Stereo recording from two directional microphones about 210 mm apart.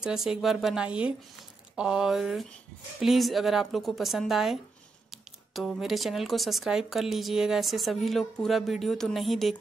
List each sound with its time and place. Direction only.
0.0 s speech: 5° right (ahead or behind)